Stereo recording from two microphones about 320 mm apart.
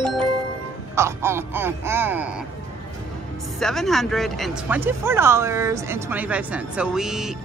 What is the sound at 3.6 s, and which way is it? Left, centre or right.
Speech, centre.